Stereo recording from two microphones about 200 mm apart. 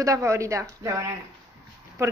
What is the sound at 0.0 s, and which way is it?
Speech, 15° right (ahead or behind).